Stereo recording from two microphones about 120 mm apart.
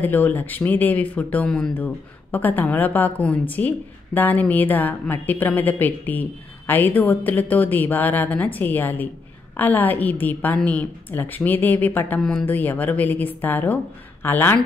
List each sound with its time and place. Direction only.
0.0 s a woman's voice: 15° left (ahead or behind)
12.2 s speech: 5° left (ahead or behind)
12.4 s a woman's voice: 15° left (ahead or behind)